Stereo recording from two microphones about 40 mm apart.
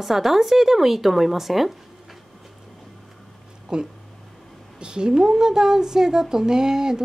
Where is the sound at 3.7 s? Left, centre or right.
Right.